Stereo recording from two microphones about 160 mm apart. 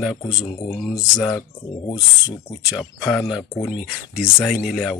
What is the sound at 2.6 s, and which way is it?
Speech, centre (ahead or behind).